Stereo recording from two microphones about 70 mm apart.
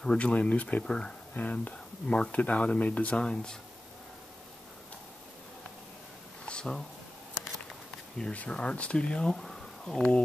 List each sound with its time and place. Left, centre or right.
0.0 s speech: centre
1.3 s speech: left
6.4 s a sound: centre
8.2 s speech: centre